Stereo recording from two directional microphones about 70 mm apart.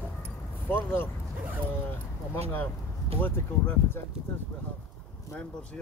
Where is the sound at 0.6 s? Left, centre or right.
Left.